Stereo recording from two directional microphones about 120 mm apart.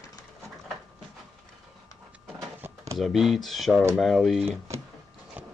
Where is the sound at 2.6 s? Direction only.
25° right (ahead or behind).